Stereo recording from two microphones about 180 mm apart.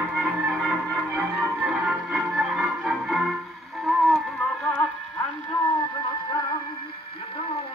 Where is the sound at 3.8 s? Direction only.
Centre (ahead or behind).